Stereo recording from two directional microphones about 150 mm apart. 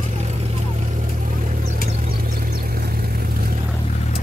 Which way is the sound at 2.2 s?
75° right (ahead or behind).